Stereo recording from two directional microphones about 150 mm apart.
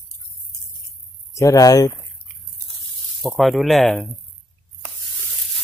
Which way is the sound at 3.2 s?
Centre (ahead or behind).